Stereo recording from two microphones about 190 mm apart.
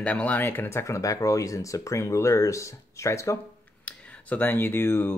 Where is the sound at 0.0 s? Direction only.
5° left (ahead or behind).